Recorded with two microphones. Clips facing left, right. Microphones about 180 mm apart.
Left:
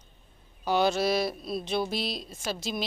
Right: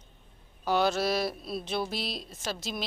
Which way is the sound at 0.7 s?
Centre (ahead or behind).